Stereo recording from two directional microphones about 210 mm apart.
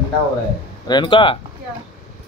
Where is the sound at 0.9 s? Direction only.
25° left (ahead or behind).